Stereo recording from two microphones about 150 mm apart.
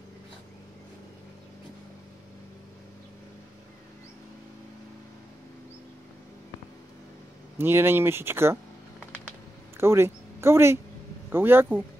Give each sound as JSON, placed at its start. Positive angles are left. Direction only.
{"t": 7.5, "sound": "speech", "side_deg": -15}
{"t": 9.8, "sound": "speech", "side_deg": -15}